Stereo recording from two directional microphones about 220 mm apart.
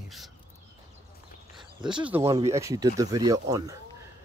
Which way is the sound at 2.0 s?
10° right (ahead or behind).